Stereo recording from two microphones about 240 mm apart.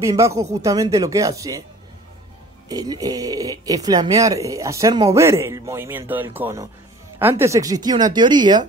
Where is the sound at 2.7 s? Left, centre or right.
Centre.